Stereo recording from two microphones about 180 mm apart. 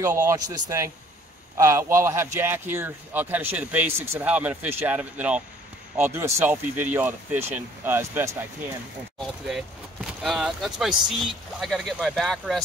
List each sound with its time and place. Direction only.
0.0 s speech: 10° right (ahead or behind)
10.2 s speech: centre (ahead or behind)